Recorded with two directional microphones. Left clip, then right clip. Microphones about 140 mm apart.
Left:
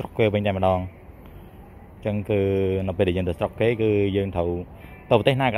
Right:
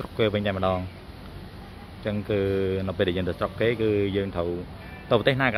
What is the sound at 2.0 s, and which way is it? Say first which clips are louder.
Speech: left 3 dB; 30° left (ahead or behind).